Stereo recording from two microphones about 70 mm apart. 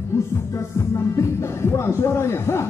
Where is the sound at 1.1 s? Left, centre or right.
Left.